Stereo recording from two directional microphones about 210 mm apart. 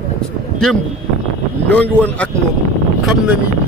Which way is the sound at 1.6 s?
5° left (ahead or behind).